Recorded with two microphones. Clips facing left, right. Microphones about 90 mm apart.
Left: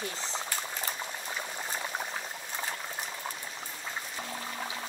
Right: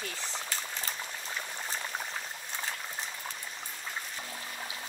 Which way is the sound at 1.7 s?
15° left (ahead or behind).